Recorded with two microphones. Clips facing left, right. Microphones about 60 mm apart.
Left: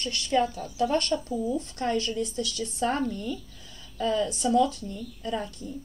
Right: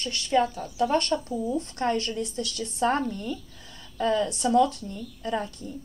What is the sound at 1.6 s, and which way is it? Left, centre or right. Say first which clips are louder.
Speech: right 1 dB; right.